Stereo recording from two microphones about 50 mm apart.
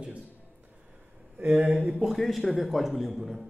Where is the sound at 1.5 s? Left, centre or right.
Right.